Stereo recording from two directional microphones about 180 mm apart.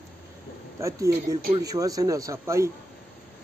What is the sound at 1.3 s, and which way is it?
Speech, 20° right (ahead or behind).